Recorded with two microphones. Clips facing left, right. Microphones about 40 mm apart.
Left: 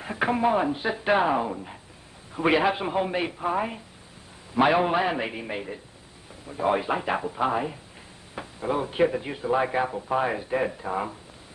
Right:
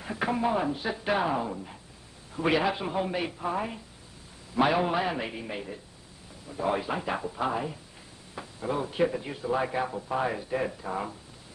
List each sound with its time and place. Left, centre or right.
0.0 s speech: left